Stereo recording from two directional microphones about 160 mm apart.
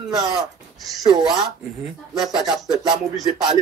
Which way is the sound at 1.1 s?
Centre (ahead or behind).